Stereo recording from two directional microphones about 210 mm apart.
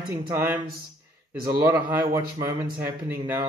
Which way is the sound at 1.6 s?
10° right (ahead or behind).